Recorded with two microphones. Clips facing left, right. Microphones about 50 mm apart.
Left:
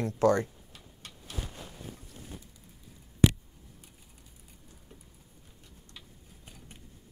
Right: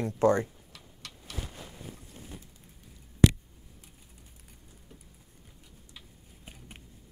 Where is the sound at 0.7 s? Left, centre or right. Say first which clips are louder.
Right 1 dB; right.